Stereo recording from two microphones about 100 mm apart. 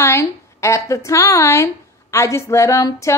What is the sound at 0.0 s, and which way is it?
A woman's voice, 25° left (ahead or behind).